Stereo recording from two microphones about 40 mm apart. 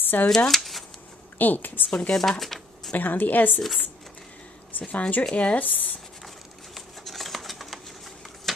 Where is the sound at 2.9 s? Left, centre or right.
Left.